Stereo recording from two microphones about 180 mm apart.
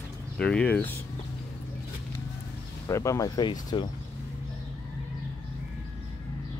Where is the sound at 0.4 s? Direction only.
5° left (ahead or behind).